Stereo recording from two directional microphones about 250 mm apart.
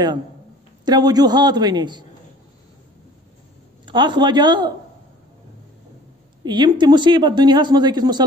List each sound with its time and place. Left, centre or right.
0.8 s speech: centre
3.8 s speech: centre
6.4 s speech: centre